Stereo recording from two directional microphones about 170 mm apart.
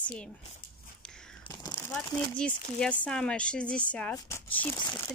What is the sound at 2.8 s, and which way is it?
A woman's voice, 5° left (ahead or behind).